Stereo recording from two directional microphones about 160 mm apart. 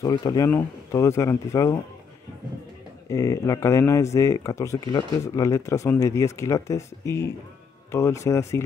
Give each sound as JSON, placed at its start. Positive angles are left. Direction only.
{"t": 0.0, "sound": "speech", "side_deg": 25}
{"t": 0.5, "sound": "speech", "side_deg": 15}
{"t": 3.1, "sound": "speech", "side_deg": 20}